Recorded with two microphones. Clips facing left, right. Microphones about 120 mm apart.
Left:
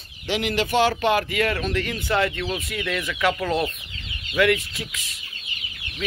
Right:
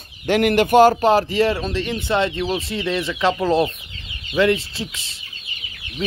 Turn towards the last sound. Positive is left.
turn(degrees=-30)  # may be behind; listen again after turning